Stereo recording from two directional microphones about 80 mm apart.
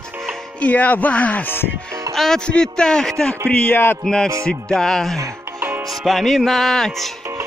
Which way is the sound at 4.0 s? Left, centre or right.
Centre.